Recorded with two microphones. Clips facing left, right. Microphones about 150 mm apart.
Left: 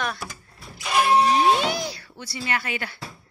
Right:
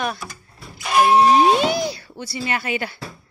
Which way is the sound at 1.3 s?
20° right (ahead or behind).